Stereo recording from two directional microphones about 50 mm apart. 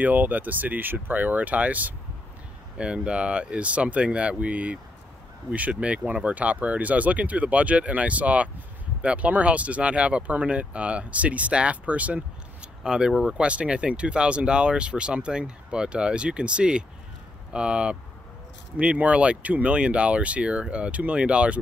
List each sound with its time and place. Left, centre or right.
0.0 s speech: right
2.8 s speech: right
12.8 s speech: centre
13.3 s speech: right